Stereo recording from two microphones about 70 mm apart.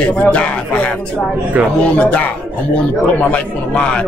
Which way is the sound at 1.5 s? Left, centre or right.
Right.